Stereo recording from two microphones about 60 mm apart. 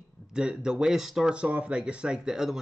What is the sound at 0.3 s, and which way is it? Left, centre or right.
Speech, centre.